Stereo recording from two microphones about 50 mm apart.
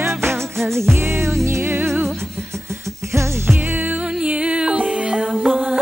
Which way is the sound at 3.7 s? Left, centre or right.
Right.